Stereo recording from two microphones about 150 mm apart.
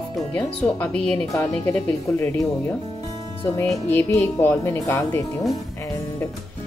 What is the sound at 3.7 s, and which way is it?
Speech, 15° left (ahead or behind).